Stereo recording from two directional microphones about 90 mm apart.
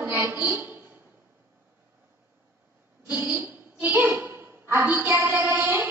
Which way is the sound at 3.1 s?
20° right (ahead or behind).